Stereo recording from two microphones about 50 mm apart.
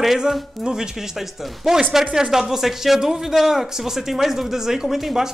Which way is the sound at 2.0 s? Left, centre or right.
Centre.